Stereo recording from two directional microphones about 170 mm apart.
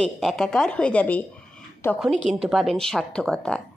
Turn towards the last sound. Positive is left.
turn(degrees=5)  # may be behind; listen again after turning